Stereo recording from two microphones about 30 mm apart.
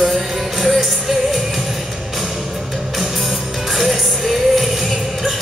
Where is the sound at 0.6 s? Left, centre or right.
Centre.